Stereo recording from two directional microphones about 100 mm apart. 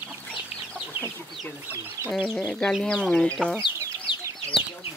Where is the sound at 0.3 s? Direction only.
10° right (ahead or behind).